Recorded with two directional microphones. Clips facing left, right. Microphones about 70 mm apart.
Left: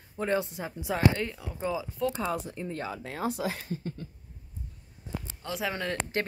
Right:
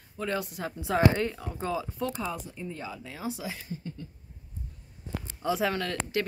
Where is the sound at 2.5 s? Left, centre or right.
Left.